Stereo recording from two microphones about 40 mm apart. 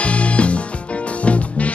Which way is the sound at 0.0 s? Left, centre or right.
Left.